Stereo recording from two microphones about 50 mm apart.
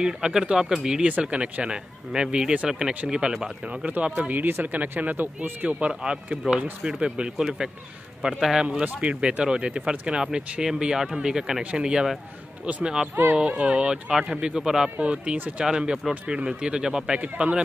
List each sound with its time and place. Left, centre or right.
0.0 s speech: centre
4.3 s speech: right
5.7 s speech: right
8.6 s speech: right
13.1 s speech: right
13.5 s speech: right
15.0 s speech: right
17.2 s speech: right